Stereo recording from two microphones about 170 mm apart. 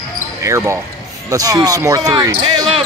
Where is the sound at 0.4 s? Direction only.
15° right (ahead or behind).